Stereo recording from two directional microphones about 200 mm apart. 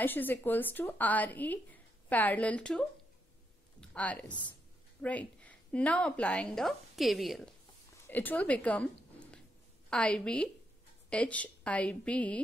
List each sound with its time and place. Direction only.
0.0 s a woman's voice: 10° left (ahead or behind)
3.8 s speech: 5° left (ahead or behind)
4.3 s speech: 20° left (ahead or behind)
5.0 s a woman's voice: 5° left (ahead or behind)
9.8 s a woman's voice: 5° left (ahead or behind)